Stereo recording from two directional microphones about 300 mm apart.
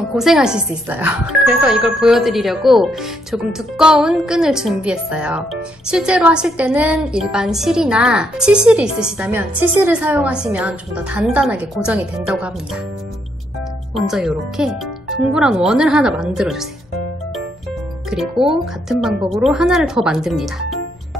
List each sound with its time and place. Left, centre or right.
0.1 s speech: centre
14.1 s speech: centre
18.1 s speech: centre